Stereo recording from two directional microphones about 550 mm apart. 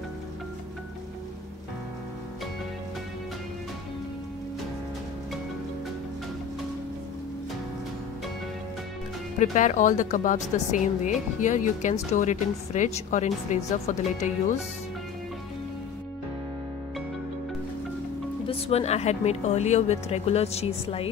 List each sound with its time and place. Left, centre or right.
9.4 s a woman's voice: centre
18.5 s a woman's voice: centre